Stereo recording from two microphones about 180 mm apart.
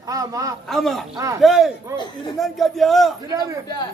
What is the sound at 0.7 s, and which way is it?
Speech, centre (ahead or behind).